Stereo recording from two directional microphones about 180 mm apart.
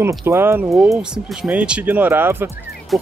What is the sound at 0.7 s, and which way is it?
Speech, 5° right (ahead or behind).